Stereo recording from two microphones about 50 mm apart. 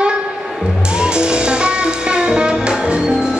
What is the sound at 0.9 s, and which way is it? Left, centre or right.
Music, centre.